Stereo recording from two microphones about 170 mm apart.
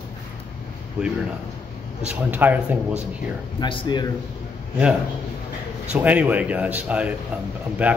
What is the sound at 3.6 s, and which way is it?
Speech, 25° left (ahead or behind).